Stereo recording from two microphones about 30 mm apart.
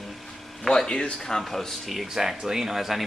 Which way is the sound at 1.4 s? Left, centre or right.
Centre.